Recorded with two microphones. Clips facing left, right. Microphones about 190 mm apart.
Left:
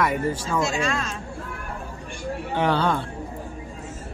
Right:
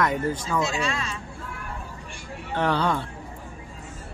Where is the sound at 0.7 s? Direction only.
45° left (ahead or behind).